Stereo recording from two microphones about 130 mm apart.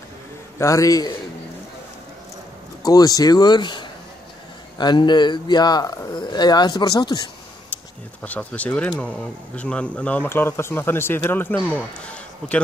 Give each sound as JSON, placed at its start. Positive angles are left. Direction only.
{"t": 0.6, "sound": "a man's voice", "side_deg": 25}
{"t": 2.8, "sound": "speech", "side_deg": 30}
{"t": 8.2, "sound": "speech", "side_deg": 10}